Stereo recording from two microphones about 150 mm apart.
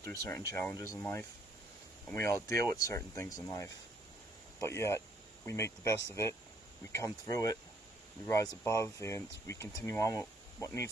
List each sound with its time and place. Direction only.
0.0 s speech: 20° left (ahead or behind)